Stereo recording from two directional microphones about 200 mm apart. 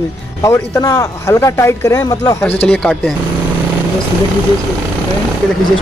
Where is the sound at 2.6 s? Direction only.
5° left (ahead or behind).